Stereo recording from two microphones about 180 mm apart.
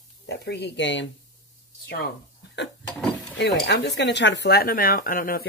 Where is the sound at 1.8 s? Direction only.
65° left (ahead or behind).